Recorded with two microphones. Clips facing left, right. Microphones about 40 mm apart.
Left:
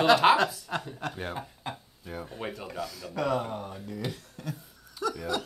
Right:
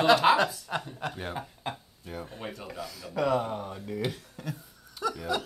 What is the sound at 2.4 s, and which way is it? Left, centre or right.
Speech, centre.